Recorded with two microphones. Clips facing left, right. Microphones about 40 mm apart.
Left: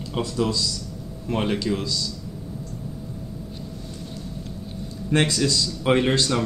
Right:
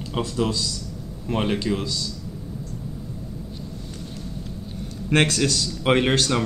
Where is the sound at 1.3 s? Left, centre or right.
Centre.